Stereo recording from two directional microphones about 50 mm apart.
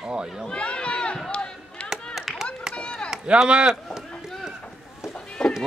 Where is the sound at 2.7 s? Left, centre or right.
Left.